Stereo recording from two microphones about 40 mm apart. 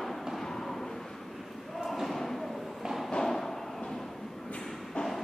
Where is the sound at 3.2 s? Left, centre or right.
Centre.